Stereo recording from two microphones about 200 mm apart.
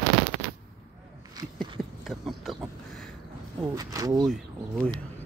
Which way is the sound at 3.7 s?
20° right (ahead or behind).